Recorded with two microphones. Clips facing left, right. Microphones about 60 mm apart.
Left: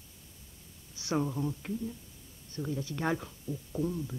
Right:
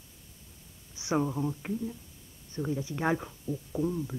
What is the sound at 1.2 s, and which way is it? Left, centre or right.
Speech, centre.